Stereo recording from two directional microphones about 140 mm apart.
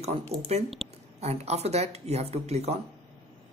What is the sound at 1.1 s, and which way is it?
Speech, 50° right (ahead or behind).